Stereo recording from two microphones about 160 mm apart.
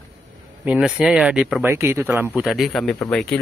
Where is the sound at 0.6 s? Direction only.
5° right (ahead or behind).